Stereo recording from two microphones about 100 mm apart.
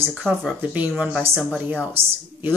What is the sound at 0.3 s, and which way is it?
Speech, 20° right (ahead or behind).